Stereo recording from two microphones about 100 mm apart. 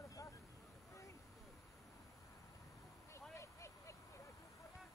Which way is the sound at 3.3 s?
30° left (ahead or behind).